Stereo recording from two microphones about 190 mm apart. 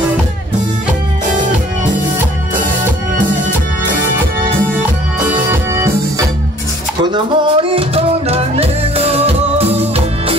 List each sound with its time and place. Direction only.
5.3 s music: 15° right (ahead or behind)
7.0 s music: 25° right (ahead or behind)